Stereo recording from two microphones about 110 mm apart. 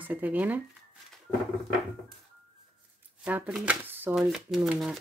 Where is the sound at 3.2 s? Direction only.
15° right (ahead or behind).